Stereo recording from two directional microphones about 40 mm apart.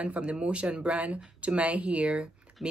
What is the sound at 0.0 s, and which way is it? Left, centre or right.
Speech, right.